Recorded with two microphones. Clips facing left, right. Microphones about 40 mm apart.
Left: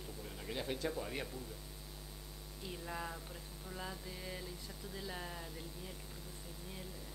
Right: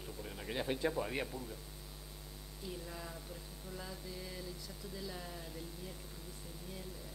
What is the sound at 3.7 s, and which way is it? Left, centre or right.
Mantra, left.